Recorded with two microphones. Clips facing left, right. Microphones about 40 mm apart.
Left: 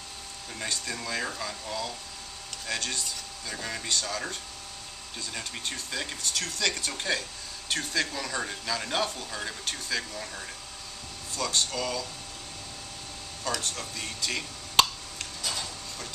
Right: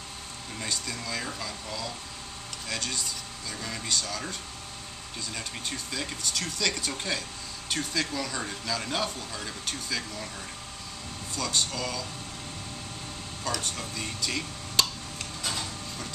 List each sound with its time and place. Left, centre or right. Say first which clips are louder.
0.6 s speech: left 1 dB; centre
11.3 s speech: left 1 dB; centre
13.4 s speech: even; centre
14.8 s tick-tock: left 4 dB; left